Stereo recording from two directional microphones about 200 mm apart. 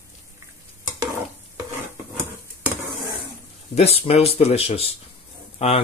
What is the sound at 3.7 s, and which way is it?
Speech, 30° left (ahead or behind).